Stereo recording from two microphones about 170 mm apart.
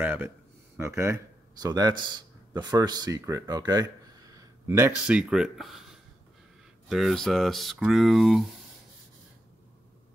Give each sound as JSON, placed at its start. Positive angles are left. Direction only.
{"t": 0.0, "sound": "speech", "side_deg": -10}